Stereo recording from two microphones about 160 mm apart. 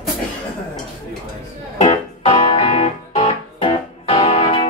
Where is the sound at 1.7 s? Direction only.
40° left (ahead or behind).